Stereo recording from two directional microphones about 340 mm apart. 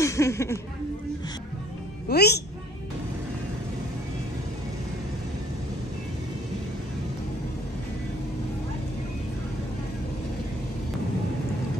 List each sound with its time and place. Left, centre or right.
0.0 s speech: centre
2.0 s a woman's voice: left